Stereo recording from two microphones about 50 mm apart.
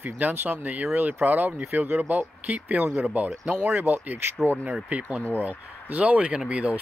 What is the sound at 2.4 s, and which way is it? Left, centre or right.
Speech, right.